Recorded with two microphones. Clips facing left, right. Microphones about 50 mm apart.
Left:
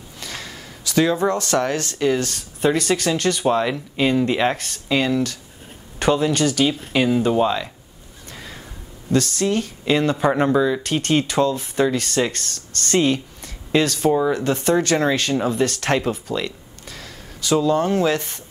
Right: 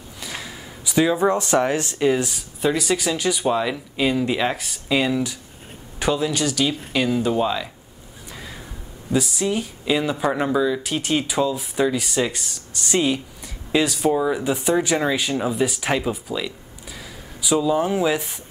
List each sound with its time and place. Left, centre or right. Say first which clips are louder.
0.2 s speech: even; centre
3.4 s speech: left 2 dB; centre
4.8 s speech: left 1 dB; centre
5.9 s speech: left 3 dB; centre
9.1 s speech: left 2 dB; centre
10.2 s speech: left 3 dB; centre
10.8 s speech: left 3 dB; centre
13.9 s speech: left 2 dB; centre